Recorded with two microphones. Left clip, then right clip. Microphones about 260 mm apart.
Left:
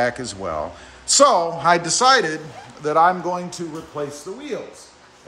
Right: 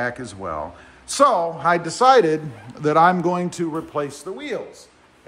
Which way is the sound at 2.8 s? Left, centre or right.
Right.